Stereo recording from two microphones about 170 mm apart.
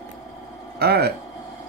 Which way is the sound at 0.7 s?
70° right (ahead or behind).